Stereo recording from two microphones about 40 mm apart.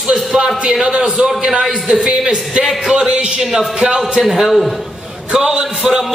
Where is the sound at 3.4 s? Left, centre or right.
Centre.